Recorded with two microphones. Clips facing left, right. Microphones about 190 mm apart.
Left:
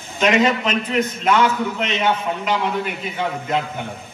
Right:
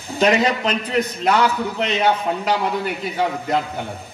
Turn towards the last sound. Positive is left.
turn(degrees=-40)  # may be behind; listen again after turning